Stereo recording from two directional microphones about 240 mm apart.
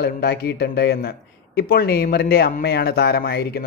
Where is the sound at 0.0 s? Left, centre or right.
Left.